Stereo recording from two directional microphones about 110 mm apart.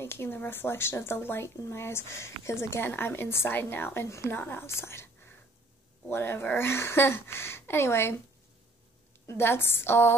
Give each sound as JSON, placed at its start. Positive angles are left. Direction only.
{"t": 0.0, "sound": "speech", "side_deg": 20}
{"t": 9.3, "sound": "speech", "side_deg": 20}